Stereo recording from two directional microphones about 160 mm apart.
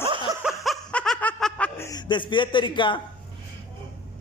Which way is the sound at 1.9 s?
30° left (ahead or behind).